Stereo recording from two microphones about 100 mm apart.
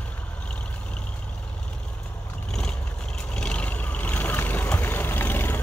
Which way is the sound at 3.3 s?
10° left (ahead or behind).